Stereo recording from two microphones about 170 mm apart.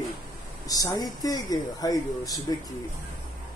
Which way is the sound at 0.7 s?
20° left (ahead or behind).